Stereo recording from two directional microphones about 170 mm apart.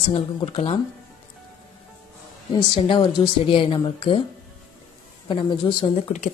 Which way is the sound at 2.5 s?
30° left (ahead or behind).